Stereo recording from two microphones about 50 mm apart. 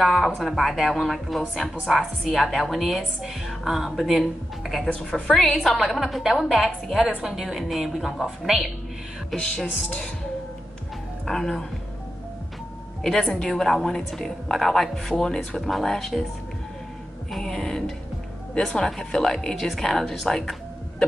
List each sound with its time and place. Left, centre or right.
0.0 s a woman's voice: centre
9.8 s speech: centre
11.2 s a woman's voice: centre
13.0 s a woman's voice: centre
17.3 s a woman's voice: centre